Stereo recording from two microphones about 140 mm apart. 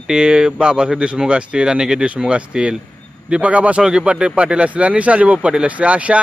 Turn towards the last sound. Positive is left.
turn(degrees=-10)  # may be behind; listen again after turning